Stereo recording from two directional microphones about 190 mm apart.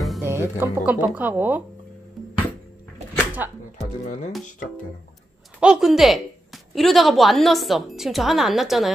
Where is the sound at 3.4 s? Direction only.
10° right (ahead or behind).